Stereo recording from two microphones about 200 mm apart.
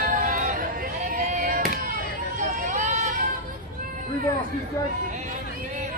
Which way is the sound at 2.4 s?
40° right (ahead or behind).